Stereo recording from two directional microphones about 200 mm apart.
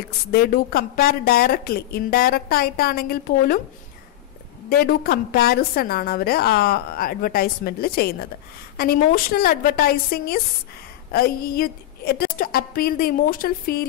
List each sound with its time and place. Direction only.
0.3 s a woman's voice: 50° left (ahead or behind)
4.6 s a woman's voice: 50° left (ahead or behind)